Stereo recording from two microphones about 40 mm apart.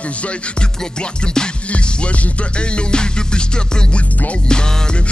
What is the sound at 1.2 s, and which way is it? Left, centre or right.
Music, centre.